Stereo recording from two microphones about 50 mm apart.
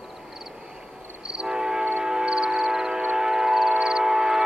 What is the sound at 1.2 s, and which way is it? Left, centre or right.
Train, centre.